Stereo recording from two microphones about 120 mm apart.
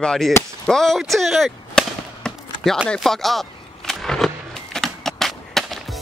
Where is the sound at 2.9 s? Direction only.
Centre (ahead or behind).